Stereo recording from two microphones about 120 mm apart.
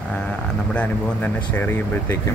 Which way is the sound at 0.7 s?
15° left (ahead or behind).